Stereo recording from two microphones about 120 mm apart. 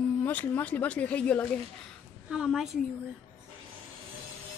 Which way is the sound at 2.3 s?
5° right (ahead or behind).